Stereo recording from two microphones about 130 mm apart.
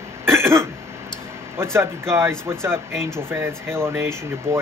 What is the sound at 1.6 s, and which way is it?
Speech, 20° right (ahead or behind).